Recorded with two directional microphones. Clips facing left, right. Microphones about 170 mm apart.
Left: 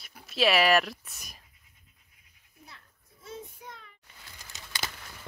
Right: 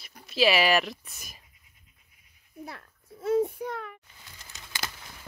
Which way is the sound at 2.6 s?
70° right (ahead or behind).